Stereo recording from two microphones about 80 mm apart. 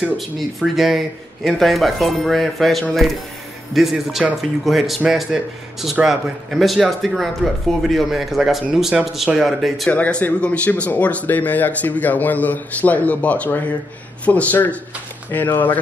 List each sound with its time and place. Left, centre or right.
0.6 s speech: centre
9.8 s speech: centre